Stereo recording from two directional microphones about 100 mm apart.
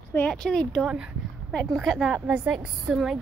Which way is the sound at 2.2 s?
10° right (ahead or behind).